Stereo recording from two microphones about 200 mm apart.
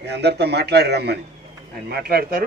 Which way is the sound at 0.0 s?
55° right (ahead or behind).